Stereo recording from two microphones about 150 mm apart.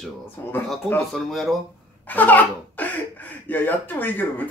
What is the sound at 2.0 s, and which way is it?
Speech, 10° left (ahead or behind).